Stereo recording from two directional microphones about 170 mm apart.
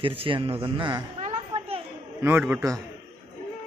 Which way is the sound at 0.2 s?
35° right (ahead or behind).